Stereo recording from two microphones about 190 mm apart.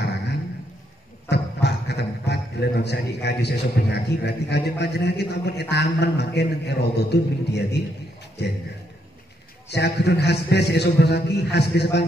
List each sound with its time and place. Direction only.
0.0 s a sound: 60° left (ahead or behind)
1.3 s a man's voice: 60° left (ahead or behind)
9.7 s a man's voice: 60° left (ahead or behind)